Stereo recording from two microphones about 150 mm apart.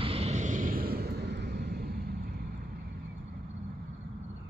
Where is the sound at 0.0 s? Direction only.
40° right (ahead or behind); by 2.6 s 90° right.